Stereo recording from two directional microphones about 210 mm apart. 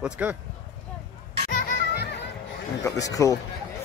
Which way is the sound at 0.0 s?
5° right (ahead or behind).